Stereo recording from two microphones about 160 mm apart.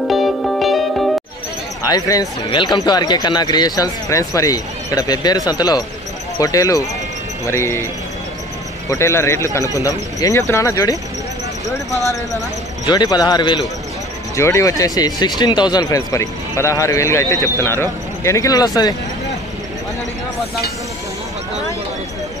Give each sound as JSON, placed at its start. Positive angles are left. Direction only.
{"t": 0.1, "sound": "music", "side_deg": 0}
{"t": 1.9, "sound": "speech", "side_deg": 20}
{"t": 8.8, "sound": "speech", "side_deg": 20}